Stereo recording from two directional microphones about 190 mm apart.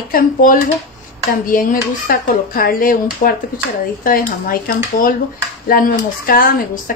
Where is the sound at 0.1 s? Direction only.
45° left (ahead or behind).